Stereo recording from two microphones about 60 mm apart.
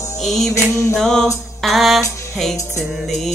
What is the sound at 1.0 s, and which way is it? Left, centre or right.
Music, centre.